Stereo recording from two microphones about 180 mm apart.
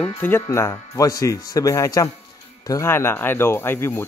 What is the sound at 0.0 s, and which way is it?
Speech, 10° left (ahead or behind).